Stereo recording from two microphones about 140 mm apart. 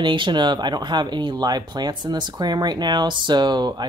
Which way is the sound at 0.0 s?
35° right (ahead or behind).